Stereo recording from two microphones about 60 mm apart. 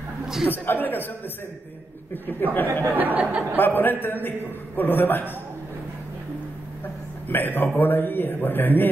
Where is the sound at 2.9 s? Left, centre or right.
Right.